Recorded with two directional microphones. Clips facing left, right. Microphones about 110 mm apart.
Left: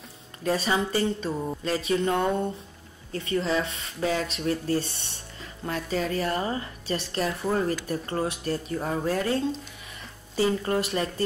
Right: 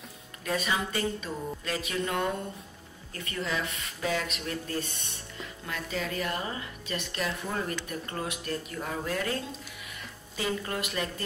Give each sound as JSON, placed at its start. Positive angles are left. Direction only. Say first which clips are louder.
{"t": 0.4, "sound": "a woman's voice", "louder": "left 5 dB", "side_deg": 30}